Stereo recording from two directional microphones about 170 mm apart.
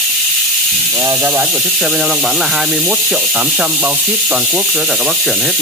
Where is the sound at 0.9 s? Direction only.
20° right (ahead or behind).